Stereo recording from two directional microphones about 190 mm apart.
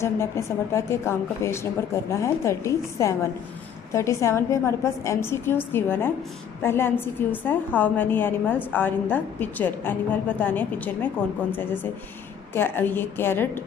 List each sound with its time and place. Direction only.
0.0 s a woman's voice: 15° left (ahead or behind)